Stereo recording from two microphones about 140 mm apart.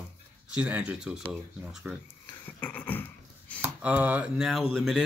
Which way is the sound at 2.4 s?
10° left (ahead or behind).